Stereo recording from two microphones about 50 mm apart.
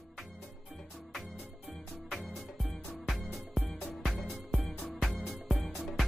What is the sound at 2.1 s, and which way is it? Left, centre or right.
Music, centre.